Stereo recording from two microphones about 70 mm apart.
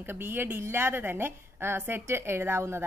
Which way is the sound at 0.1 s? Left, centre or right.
Right.